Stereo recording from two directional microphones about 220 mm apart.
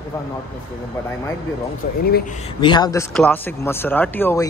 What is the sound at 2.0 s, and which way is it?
Speech, 45° left (ahead or behind).